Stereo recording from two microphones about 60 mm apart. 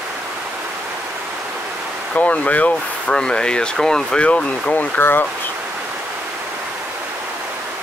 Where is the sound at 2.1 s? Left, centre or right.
Left.